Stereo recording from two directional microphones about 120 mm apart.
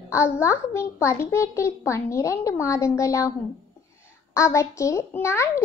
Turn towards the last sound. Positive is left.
turn(degrees=20)  # may be behind; listen again after turning